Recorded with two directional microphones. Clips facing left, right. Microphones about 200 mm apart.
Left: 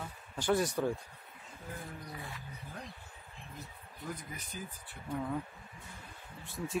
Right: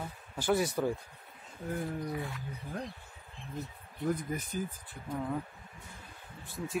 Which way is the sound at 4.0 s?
50° right (ahead or behind).